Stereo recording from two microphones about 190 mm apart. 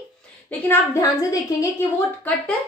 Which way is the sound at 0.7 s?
20° left (ahead or behind).